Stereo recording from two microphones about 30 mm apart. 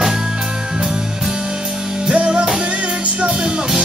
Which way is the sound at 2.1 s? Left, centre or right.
Right.